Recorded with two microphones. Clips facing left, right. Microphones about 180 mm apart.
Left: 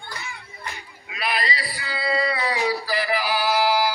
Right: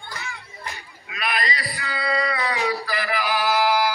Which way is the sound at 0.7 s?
30° left (ahead or behind).